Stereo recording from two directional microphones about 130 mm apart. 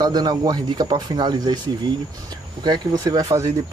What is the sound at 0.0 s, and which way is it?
Speech, 30° right (ahead or behind).